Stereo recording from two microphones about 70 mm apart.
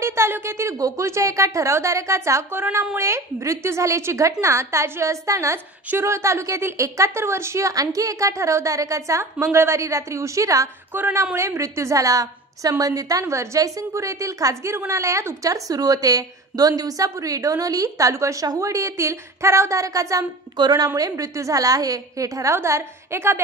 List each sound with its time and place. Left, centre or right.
0.0 s a woman's voice: right
0.7 s a woman's voice: right
10.9 s a woman's voice: right
11.3 s a woman's voice: right
13.2 s a woman's voice: right
20.5 s a woman's voice: right